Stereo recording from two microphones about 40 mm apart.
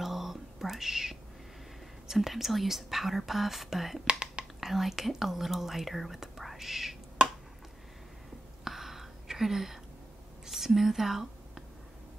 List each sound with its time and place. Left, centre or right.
0.0 s whispering: centre
2.0 s speech: centre
4.0 s whispering: right
4.6 s speech: centre
8.6 s a sound: centre